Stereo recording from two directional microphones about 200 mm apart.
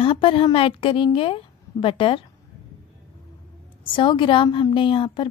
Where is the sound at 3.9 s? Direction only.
25° left (ahead or behind).